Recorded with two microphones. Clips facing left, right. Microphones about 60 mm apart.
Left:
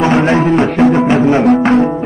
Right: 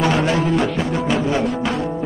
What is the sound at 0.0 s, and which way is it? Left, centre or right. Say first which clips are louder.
Music: left 7 dB; left.